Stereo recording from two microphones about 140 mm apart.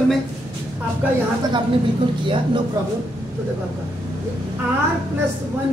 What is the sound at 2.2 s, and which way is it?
Speech, 35° right (ahead or behind).